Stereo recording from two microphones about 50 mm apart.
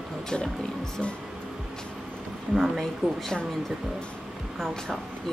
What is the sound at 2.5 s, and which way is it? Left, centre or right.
Speech, centre.